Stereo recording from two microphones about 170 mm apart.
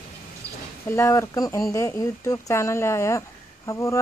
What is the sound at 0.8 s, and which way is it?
Speech, 15° left (ahead or behind).